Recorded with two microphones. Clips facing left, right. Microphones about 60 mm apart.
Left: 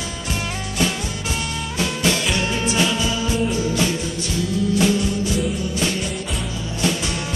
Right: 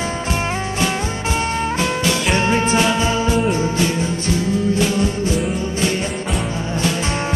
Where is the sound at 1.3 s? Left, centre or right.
Right.